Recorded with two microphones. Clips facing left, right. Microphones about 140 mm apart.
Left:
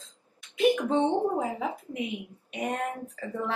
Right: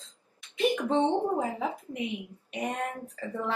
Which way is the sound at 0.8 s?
10° left (ahead or behind).